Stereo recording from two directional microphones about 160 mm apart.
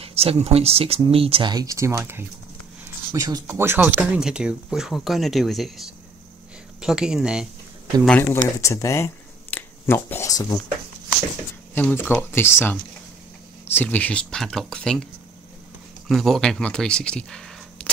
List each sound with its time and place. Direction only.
0.0 s speech: 40° right (ahead or behind); by 2.2 s 15° right (ahead or behind)
2.8 s a sound: 15° right (ahead or behind)
3.3 s speech: 20° right (ahead or behind); by 7.4 s 5° right (ahead or behind)
8.2 s speech: 15° left (ahead or behind)
11.7 s speech: 15° left (ahead or behind)
16.1 s speech: centre (ahead or behind)